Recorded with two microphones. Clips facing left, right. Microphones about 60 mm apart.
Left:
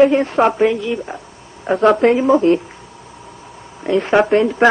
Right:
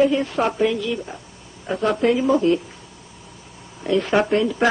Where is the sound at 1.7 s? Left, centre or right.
Left.